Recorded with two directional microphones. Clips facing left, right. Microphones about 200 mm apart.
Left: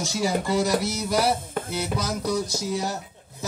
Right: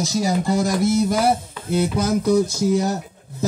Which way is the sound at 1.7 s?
55° right (ahead or behind).